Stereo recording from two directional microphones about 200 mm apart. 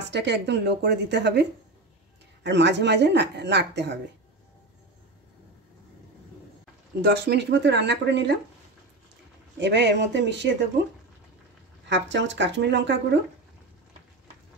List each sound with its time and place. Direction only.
0.0 s speech: 60° right (ahead or behind)
7.1 s speech: 60° right (ahead or behind)
9.6 s speech: 60° right (ahead or behind)
11.9 s speech: 65° right (ahead or behind)